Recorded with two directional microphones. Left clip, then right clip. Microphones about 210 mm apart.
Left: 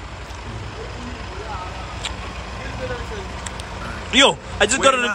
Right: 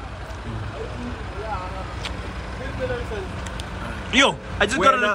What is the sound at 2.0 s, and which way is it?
Vehicle, centre (ahead or behind).